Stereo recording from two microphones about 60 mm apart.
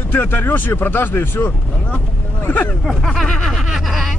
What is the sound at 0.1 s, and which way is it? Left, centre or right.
Speech, left.